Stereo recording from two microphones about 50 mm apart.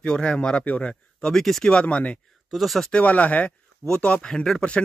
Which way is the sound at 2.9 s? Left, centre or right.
Left.